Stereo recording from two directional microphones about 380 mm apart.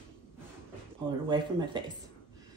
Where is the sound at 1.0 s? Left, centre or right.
Centre.